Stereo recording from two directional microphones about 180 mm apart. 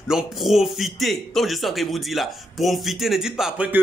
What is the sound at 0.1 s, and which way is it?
Speech, centre (ahead or behind).